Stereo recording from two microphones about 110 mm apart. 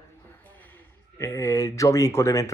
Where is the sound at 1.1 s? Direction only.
25° left (ahead or behind).